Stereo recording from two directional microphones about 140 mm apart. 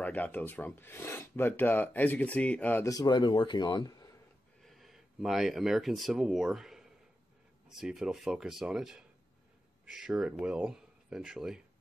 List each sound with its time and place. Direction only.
0.0 s speech: 10° left (ahead or behind)
2.8 s speech: 25° left (ahead or behind)
4.6 s speech: centre (ahead or behind)